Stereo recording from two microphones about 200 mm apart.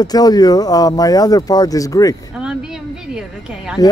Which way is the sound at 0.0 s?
20° left (ahead or behind).